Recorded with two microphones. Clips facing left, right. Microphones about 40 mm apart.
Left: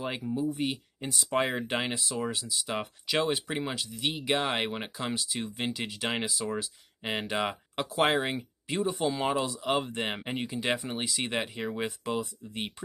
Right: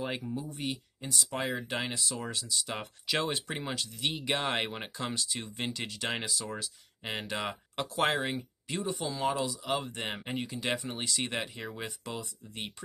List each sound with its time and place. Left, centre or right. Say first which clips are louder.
0.0 s speech: left 4 dB; centre
0.7 s speech: left 3 dB; left
8.2 s speech: left 3 dB; left